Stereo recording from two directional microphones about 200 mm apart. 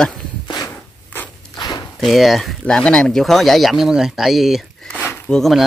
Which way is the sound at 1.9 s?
Centre (ahead or behind).